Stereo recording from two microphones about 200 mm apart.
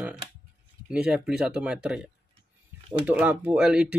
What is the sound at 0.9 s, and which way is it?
Speech, 5° right (ahead or behind).